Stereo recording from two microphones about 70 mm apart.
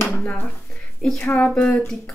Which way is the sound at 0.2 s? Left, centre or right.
Left.